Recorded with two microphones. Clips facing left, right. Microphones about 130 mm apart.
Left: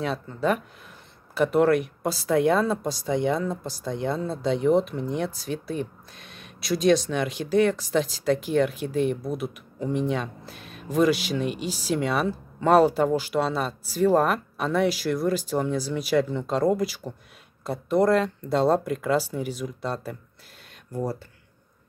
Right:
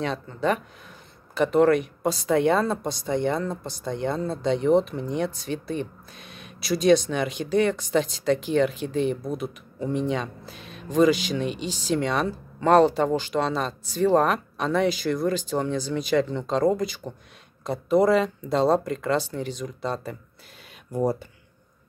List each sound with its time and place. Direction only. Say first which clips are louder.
0.0 s speech: even; 5° left (ahead or behind)
20.9 s speech: right 5 dB; 15° right (ahead or behind)